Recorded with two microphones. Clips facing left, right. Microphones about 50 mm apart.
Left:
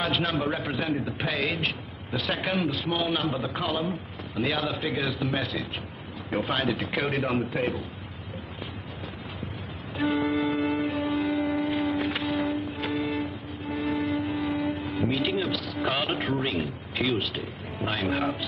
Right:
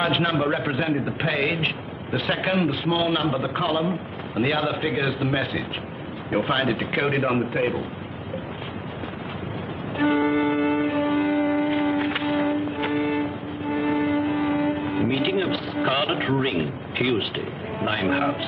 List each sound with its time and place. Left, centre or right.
0.0 s a man's voice: centre
0.4 s a man's voice: centre
3.5 s a man's voice: centre
3.8 s a man's voice: centre
10.1 s music: right
11.5 s a sound: centre
12.3 s music: right
12.5 s music: centre
12.8 s vehicle: right
14.0 s music: right
15.0 s music: centre
16.3 s speech: centre